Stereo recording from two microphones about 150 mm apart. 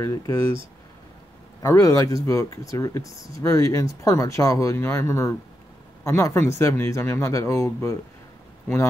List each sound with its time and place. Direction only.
0.0 s speech: 15° left (ahead or behind)
1.6 s speech: 20° left (ahead or behind)